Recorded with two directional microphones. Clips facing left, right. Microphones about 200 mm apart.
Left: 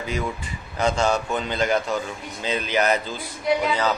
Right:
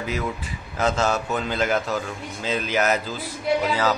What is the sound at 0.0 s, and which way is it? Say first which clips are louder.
Speech: even; 5° right (ahead or behind).